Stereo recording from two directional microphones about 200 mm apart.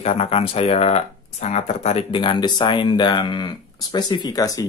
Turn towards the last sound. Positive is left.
turn(degrees=15)  # may be behind; listen again after turning